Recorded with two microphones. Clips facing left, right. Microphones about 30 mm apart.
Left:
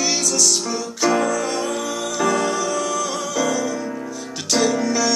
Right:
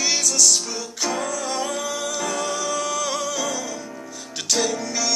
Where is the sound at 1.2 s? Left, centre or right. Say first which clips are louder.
Left 6 dB; centre.